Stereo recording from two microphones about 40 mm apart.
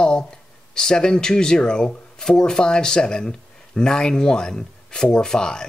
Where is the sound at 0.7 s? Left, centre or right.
Centre.